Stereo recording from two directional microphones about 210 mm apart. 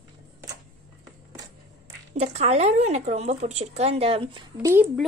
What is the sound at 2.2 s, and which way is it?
Speech, 30° right (ahead or behind).